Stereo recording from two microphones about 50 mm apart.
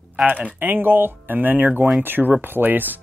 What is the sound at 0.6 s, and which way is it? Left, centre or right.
Speech, right.